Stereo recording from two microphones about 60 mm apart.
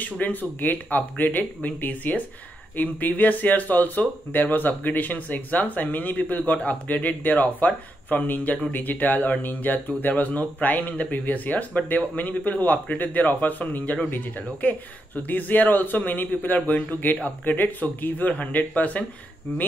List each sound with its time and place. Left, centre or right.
0.0 s a man's voice: left